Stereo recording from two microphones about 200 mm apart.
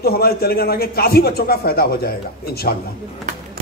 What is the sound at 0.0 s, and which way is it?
A man's voice, 50° left (ahead or behind).